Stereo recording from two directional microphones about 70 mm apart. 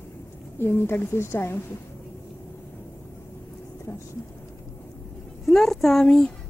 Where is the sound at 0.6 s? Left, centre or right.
Left.